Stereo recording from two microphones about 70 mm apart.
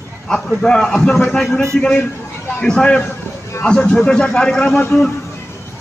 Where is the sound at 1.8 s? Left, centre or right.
Centre.